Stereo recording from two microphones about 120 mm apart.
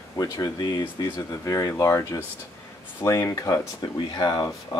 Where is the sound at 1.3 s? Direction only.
25° left (ahead or behind).